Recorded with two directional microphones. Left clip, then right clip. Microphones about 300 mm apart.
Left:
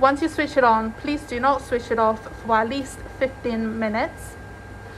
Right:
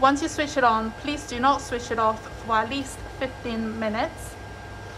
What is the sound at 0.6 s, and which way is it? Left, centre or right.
A woman's voice, centre.